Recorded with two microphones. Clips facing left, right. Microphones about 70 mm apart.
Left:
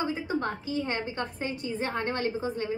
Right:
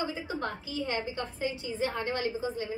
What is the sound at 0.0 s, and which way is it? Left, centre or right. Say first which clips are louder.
A woman's voice: left 4 dB; left.